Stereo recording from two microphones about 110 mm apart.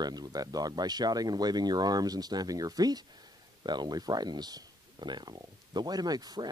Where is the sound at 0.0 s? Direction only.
40° right (ahead or behind).